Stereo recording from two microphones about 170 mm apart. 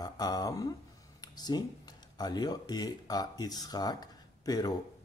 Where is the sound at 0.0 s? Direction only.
25° left (ahead or behind).